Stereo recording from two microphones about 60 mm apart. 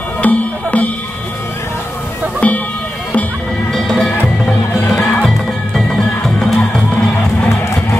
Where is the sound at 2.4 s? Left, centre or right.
Left.